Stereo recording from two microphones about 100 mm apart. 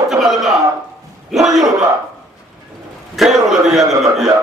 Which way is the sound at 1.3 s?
5° right (ahead or behind).